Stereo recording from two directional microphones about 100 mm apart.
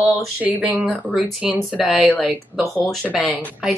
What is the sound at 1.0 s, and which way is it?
A woman's voice, 10° right (ahead or behind).